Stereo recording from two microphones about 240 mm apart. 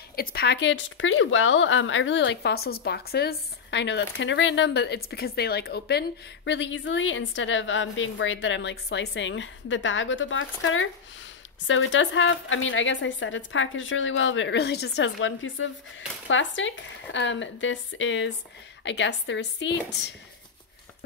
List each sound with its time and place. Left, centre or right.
0.1 s a woman's voice: left